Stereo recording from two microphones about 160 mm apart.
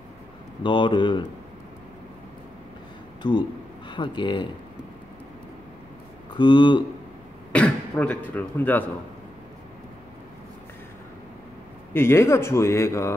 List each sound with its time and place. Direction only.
0.7 s speech: 30° left (ahead or behind)
3.2 s speech: 30° left (ahead or behind)
6.3 s speech: 30° left (ahead or behind)
7.5 s speech: 10° left (ahead or behind)
11.9 s speech: 15° left (ahead or behind)